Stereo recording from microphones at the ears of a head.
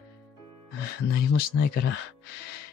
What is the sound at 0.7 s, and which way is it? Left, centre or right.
Speech, left.